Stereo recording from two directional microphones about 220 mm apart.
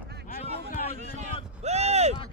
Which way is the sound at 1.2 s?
30° right (ahead or behind).